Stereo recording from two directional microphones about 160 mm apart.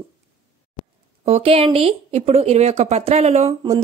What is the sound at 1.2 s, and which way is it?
A woman's voice, 40° right (ahead or behind).